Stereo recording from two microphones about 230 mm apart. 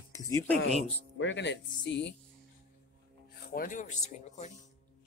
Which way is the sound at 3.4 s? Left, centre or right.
Left.